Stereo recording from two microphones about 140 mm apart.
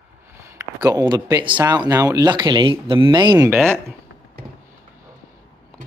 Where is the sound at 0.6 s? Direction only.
25° right (ahead or behind).